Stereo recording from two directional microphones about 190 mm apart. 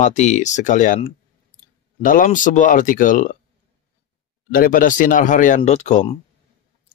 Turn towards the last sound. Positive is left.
turn(degrees=40)  # may be behind; listen again after turning